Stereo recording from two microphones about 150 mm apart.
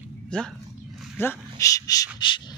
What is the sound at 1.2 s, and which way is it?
Speech, 20° left (ahead or behind).